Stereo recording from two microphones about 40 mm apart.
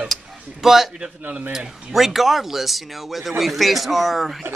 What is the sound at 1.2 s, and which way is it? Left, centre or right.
Speech, right.